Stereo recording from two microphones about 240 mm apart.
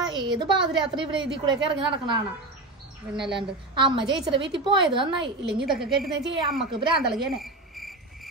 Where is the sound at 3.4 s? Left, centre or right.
Right.